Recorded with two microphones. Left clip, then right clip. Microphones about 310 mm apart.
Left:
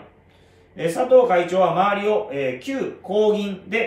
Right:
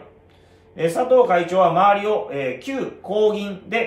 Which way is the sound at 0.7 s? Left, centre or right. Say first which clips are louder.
Left 1 dB; centre.